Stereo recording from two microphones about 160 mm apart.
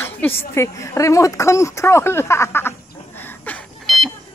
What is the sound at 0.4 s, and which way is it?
A woman's voice, 20° left (ahead or behind).